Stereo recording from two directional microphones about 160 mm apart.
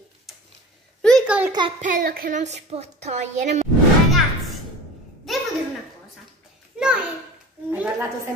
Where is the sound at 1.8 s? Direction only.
55° right (ahead or behind).